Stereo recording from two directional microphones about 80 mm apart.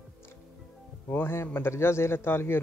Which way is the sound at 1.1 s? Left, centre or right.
Left.